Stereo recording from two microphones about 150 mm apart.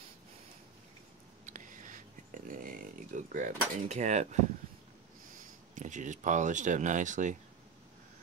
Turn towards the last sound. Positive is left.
turn(degrees=-55)  # may be behind; listen again after turning